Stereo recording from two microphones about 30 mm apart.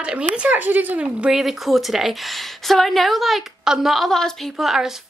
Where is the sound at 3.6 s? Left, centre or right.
Centre.